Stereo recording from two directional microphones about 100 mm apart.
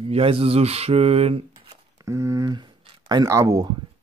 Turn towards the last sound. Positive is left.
turn(degrees=-30)  # may be behind; listen again after turning